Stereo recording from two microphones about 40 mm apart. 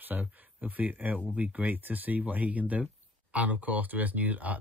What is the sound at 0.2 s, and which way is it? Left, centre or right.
Speech, right.